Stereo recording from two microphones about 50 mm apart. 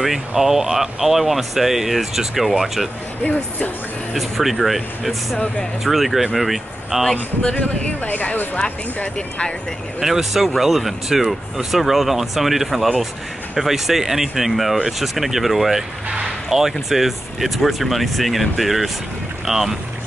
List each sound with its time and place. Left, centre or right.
0.3 s speech: centre
4.1 s speech: centre
7.5 s speech: left
9.9 s speech: centre
16.3 s a sound: centre
16.9 s speech: centre